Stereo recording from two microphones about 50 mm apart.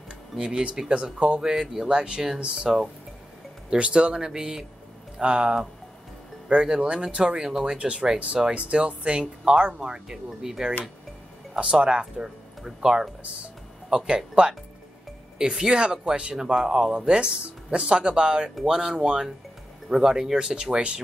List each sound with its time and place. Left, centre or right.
0.4 s speech: centre
1.4 s speech: centre